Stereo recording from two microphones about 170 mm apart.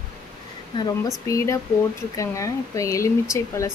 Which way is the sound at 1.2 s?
20° left (ahead or behind).